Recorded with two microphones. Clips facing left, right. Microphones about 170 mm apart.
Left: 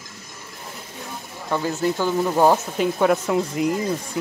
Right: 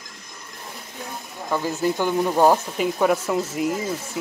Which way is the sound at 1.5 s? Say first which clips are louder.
Left 1 dB; centre (ahead or behind).